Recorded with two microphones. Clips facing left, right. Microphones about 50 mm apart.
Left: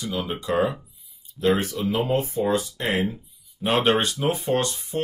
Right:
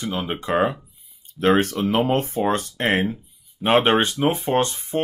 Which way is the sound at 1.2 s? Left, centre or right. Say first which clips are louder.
Right 4 dB; right.